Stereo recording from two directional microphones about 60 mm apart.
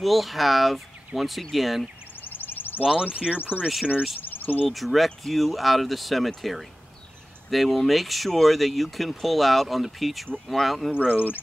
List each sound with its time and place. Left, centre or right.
0.0 s speech: centre
2.2 s a sound: left
2.8 s speech: centre
3.3 s speech: left
4.2 s insect: left
4.6 s speech: centre
11.1 s speech: left